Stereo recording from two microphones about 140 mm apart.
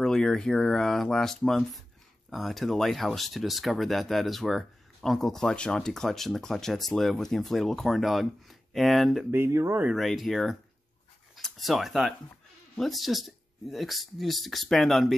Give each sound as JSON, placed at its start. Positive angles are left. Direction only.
{"t": 0.0, "sound": "speech", "side_deg": 5}
{"t": 9.3, "sound": "speech", "side_deg": -20}
{"t": 9.8, "sound": "speech", "side_deg": 0}